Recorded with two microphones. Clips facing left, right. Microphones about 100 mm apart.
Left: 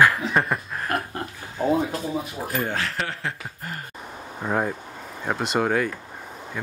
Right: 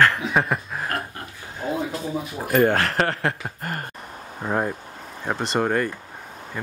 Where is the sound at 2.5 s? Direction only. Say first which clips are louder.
Right 10 dB; 60° right (ahead or behind).